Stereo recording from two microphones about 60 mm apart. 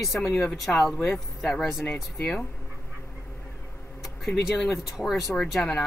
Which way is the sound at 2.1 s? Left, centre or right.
Left.